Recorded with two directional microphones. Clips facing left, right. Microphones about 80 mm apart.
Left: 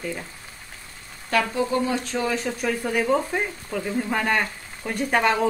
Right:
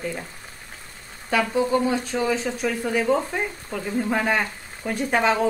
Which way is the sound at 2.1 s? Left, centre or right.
Centre.